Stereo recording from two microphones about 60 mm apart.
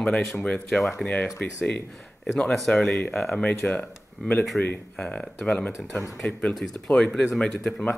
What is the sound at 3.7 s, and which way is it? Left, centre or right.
Speech, left.